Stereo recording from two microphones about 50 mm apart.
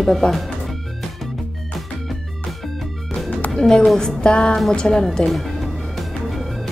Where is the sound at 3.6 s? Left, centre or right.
Centre.